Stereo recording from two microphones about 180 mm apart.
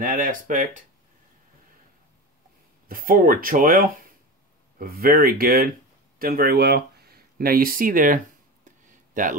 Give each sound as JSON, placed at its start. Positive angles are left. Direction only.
{"t": 0.0, "sound": "speech", "side_deg": -50}
{"t": 2.9, "sound": "speech", "side_deg": -50}
{"t": 8.8, "sound": "a sound", "side_deg": -45}